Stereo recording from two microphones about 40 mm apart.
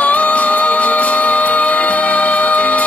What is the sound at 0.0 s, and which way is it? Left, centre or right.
Music, left.